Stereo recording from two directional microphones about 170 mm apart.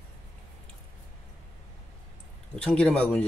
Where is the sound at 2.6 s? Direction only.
5° left (ahead or behind).